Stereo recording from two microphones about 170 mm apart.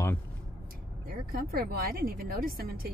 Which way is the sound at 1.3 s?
65° right (ahead or behind).